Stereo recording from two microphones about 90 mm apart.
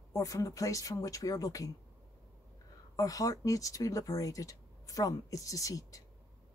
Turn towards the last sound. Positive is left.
turn(degrees=40)  # may be behind; listen again after turning